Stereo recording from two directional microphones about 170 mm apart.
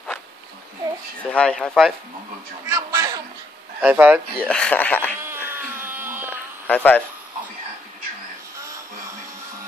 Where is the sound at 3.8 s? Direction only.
10° right (ahead or behind).